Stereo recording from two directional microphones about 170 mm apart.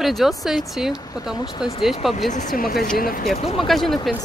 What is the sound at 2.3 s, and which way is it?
Speech, 45° left (ahead or behind).